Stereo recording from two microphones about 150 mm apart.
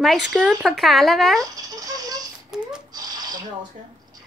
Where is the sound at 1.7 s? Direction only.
25° right (ahead or behind).